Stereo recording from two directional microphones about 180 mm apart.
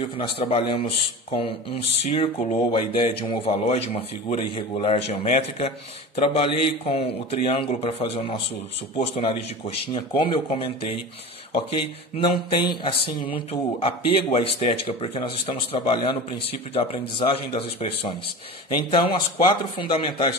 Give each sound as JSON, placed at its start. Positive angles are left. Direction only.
{"t": 0.4, "sound": "speech", "side_deg": 30}